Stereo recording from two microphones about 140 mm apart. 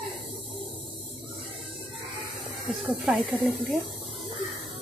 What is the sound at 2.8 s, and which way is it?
Speech, centre (ahead or behind).